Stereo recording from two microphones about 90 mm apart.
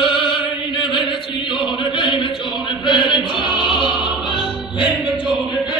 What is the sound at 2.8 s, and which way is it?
Chant, centre (ahead or behind).